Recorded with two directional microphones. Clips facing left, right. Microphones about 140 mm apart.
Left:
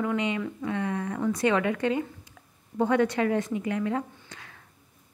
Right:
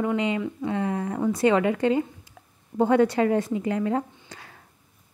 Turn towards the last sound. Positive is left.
turn(degrees=-35)  # may be behind; listen again after turning